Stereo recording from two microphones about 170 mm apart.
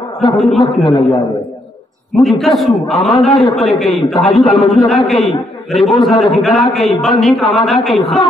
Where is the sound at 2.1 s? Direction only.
Centre (ahead or behind).